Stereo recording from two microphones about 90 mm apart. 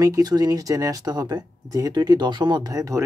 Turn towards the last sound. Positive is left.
turn(degrees=-40)  # may be behind; listen again after turning